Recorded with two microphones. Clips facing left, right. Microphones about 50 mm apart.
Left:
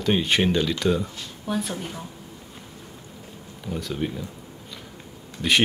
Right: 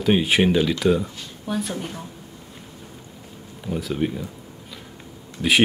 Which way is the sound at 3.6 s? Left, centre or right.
Centre.